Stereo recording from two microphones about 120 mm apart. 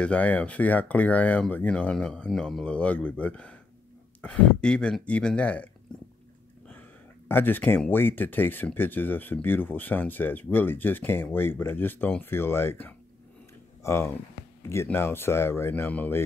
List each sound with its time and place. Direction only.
0.0 s speech: 10° left (ahead or behind)
7.2 s speech: 15° left (ahead or behind)